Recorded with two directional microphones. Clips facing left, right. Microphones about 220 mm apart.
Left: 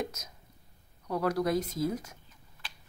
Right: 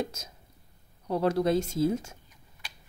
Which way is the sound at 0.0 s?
30° right (ahead or behind).